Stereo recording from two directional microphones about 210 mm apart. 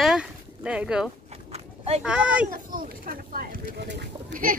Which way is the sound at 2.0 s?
5° right (ahead or behind).